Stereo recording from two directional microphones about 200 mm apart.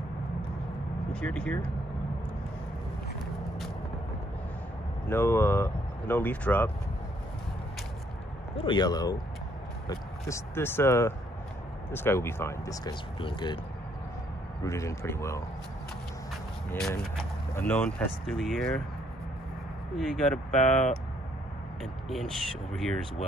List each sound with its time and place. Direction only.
1.1 s speech: 5° left (ahead or behind)
5.0 s speech: 10° left (ahead or behind)
8.5 s speech: 20° left (ahead or behind)
14.6 s speech: 15° left (ahead or behind)
16.7 s speech: 5° left (ahead or behind)
20.0 s speech: centre (ahead or behind)
22.1 s speech: centre (ahead or behind)